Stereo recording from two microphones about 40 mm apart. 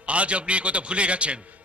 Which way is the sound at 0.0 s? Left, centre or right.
Right.